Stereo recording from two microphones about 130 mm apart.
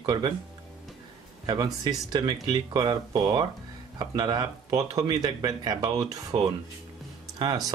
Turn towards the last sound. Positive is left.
turn(degrees=-30)  # may be behind; listen again after turning